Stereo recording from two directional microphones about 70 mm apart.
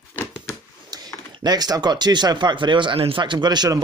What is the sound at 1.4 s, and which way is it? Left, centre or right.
Speech, right.